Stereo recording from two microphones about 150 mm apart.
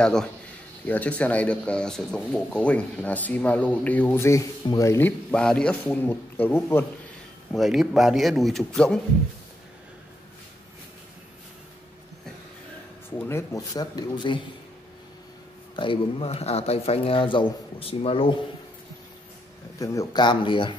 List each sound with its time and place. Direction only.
0.0 s a man's voice: 5° left (ahead or behind)
7.5 s a man's voice: centre (ahead or behind)
13.1 s speech: 15° left (ahead or behind)
15.7 s speech: 35° left (ahead or behind)
19.8 s speech: 20° left (ahead or behind)